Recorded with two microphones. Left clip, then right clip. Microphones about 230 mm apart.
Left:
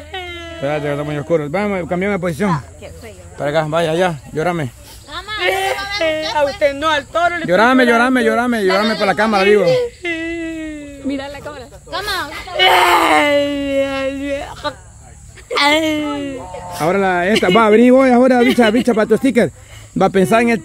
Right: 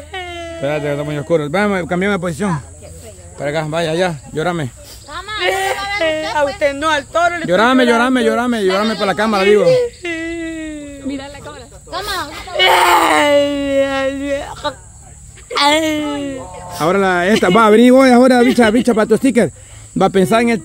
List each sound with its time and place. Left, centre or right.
0.1 s speech: centre
2.2 s speech: centre
8.7 s a sound: centre
11.1 s a sound: centre
11.9 s snake: centre
12.5 s whimper: centre
15.5 s speech: centre